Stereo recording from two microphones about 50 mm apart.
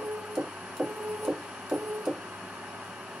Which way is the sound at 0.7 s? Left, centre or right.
Centre.